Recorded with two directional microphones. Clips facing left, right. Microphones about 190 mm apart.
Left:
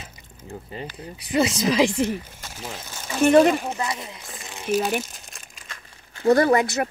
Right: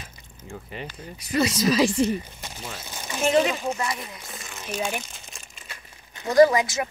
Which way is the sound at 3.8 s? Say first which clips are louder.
Left 1 dB; 25° left (ahead or behind).